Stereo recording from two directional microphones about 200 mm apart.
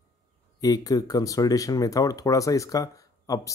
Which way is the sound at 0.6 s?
20° left (ahead or behind).